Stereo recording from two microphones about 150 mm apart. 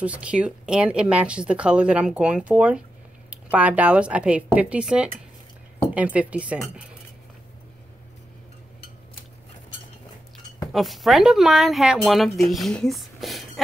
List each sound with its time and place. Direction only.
0.0 s speech: 10° right (ahead or behind)
10.6 s speech: centre (ahead or behind)